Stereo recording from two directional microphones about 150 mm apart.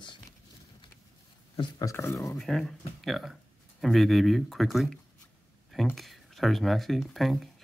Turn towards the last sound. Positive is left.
turn(degrees=0)  # may be behind; listen again after turning